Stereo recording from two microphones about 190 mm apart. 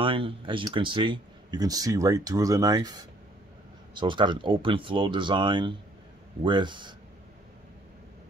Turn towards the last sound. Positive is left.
turn(degrees=-25)  # may be behind; listen again after turning